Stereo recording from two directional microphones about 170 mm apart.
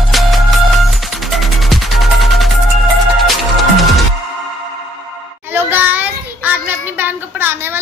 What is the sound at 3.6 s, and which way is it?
Music, centre (ahead or behind).